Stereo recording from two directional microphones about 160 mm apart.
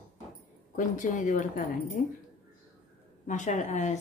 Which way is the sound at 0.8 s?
55° left (ahead or behind).